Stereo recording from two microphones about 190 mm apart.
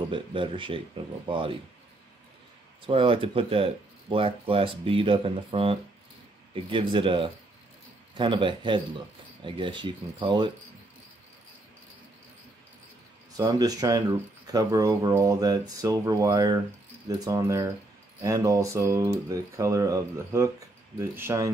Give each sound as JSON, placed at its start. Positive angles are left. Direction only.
{"t": 0.1, "sound": "speech", "side_deg": -25}
{"t": 2.9, "sound": "speech", "side_deg": -30}
{"t": 13.4, "sound": "speech", "side_deg": -20}